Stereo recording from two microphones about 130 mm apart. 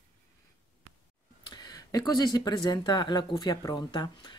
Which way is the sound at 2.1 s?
30° left (ahead or behind).